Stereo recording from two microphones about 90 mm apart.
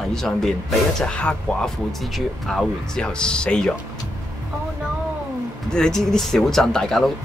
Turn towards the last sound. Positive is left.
turn(degrees=5)  # may be behind; listen again after turning